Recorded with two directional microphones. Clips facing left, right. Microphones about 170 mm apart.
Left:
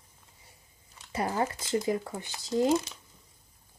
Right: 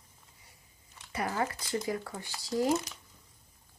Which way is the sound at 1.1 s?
25° left (ahead or behind).